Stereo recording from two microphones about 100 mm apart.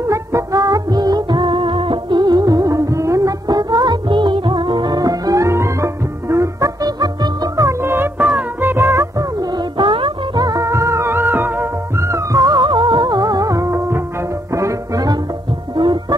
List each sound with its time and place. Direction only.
0.0 s music: 30° right (ahead or behind)
9.8 s music: 55° right (ahead or behind)
10.4 s music: 35° right (ahead or behind)
15.7 s music: 50° right (ahead or behind)